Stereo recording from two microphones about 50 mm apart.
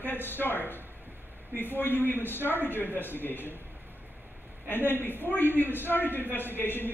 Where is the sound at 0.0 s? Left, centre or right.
Left.